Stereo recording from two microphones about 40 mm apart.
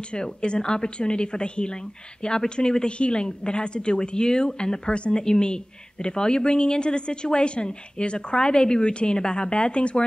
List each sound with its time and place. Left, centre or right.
0.1 s a woman's voice: left